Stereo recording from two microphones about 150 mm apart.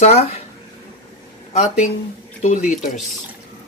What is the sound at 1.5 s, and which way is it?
Speech, 50° left (ahead or behind).